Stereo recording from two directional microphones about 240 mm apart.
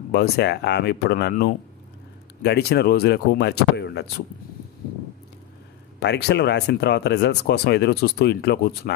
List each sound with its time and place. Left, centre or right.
0.1 s speech: left
5.9 s speech: left